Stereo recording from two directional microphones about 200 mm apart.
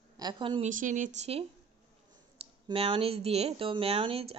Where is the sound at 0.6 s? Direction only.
40° right (ahead or behind).